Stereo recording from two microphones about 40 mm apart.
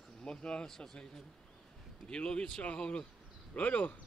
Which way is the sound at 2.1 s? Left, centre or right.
Left.